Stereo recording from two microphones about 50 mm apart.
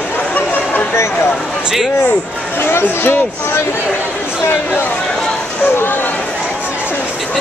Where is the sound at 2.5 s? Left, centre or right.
Left.